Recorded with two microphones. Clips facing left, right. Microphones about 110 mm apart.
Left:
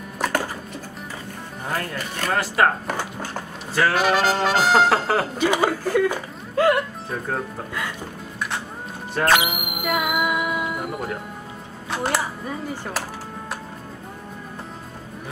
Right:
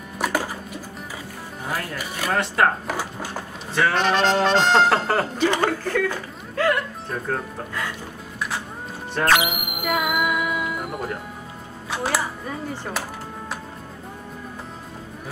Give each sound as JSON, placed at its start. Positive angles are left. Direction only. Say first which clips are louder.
{"t": 1.7, "sound": "speech", "louder": "left 1 dB", "side_deg": -5}
{"t": 6.5, "sound": "music", "louder": "left 3 dB", "side_deg": 25}
{"t": 7.1, "sound": "speech", "louder": "even", "side_deg": 0}
{"t": 8.4, "sound": "music", "louder": "even", "side_deg": 0}
{"t": 10.8, "sound": "speech", "louder": "left 1 dB", "side_deg": 0}